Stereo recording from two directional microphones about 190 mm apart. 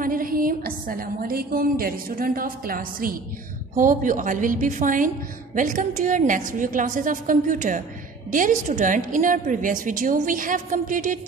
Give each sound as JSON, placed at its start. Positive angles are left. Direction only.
{"t": 0.0, "sound": "a woman's voice", "side_deg": -45}